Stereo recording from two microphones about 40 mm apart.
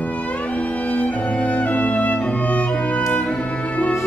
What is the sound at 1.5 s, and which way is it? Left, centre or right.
Music, left.